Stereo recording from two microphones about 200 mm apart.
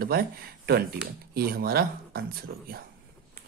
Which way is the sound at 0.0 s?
50° right (ahead or behind).